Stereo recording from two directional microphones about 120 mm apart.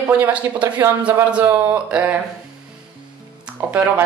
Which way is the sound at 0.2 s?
15° right (ahead or behind).